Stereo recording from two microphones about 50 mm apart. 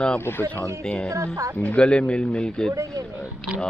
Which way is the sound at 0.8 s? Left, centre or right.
Centre.